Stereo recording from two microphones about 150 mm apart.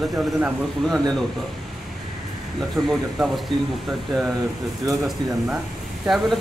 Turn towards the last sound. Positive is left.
turn(degrees=0)  # may be behind; listen again after turning